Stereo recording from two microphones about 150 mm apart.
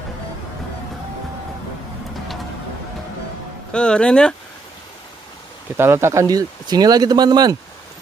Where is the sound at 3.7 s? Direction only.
5° left (ahead or behind).